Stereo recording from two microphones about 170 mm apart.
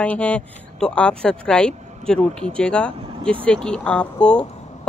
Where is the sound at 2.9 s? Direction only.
30° right (ahead or behind).